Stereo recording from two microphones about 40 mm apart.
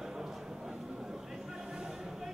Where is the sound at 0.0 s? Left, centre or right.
Centre.